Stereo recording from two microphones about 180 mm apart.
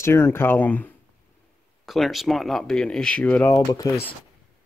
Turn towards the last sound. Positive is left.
turn(degrees=20)  # may be behind; listen again after turning